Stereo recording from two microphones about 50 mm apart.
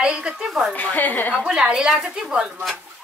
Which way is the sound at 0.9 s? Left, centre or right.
Left.